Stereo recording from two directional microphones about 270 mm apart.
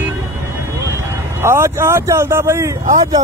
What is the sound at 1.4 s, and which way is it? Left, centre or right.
Speech, centre.